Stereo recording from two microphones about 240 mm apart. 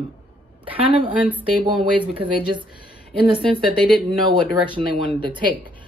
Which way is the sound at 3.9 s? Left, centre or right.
Centre.